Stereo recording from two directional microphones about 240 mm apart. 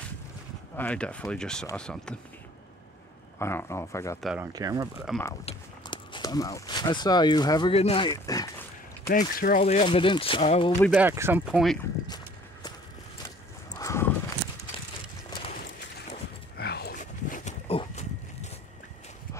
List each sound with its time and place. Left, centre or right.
0.7 s speech: centre
3.3 s speech: centre
4.2 s speech: centre
4.5 s speech: centre
5.1 s speech: centre
5.4 s speech: left
9.1 s speech: left
9.6 s speech: left
11.0 s speech: centre
13.7 s horse: centre
16.5 s a sound: left